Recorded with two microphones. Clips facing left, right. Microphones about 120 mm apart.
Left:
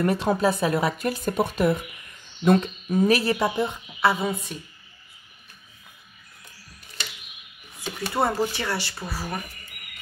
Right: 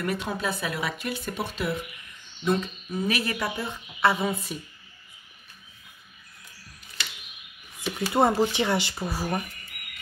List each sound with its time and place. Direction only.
0.0 s speech: 35° left (ahead or behind); by 3.0 s 55° left (ahead or behind)
3.1 s speech: 35° left (ahead or behind)
4.0 s a woman's voice: centre (ahead or behind)
8.1 s speech: 20° right (ahead or behind)